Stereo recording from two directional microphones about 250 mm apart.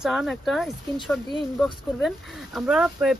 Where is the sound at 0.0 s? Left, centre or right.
Centre.